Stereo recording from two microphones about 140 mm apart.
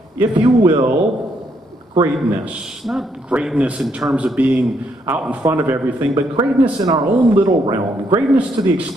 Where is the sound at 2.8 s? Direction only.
5° right (ahead or behind).